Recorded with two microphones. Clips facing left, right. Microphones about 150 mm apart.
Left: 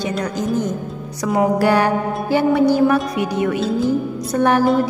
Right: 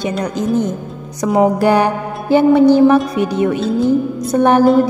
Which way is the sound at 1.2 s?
25° right (ahead or behind).